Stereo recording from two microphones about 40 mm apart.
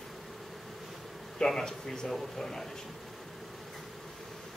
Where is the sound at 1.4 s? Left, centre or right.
Centre.